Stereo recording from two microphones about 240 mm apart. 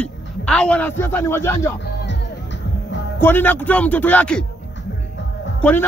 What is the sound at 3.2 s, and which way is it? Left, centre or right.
A man's voice, centre.